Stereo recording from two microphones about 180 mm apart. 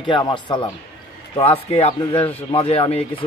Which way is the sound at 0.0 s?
25° left (ahead or behind).